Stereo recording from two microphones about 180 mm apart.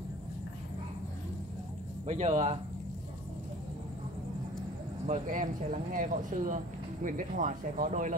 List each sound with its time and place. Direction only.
2.0 s speech: 40° right (ahead or behind)
5.0 s speech: 40° right (ahead or behind)